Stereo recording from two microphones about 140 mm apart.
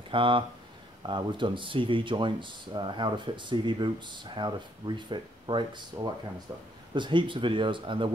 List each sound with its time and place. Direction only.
0.1 s speech: 35° right (ahead or behind)